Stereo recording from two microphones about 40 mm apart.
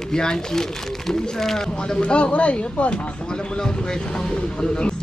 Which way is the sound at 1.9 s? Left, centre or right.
Left.